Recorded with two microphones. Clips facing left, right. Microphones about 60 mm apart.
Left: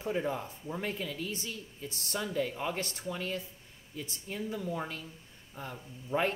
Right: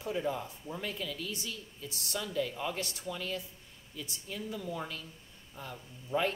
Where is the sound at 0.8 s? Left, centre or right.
Left.